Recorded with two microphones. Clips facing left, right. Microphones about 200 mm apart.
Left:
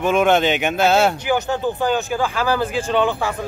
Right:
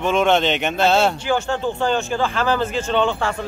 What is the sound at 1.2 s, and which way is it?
Speech, 15° left (ahead or behind).